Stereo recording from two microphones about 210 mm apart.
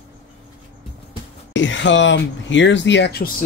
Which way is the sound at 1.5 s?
60° left (ahead or behind).